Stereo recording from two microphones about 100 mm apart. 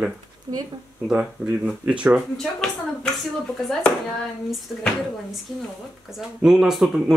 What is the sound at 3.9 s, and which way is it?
Speech, 10° left (ahead or behind).